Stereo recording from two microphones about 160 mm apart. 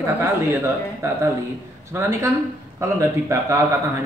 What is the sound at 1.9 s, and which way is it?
Speech, 15° right (ahead or behind).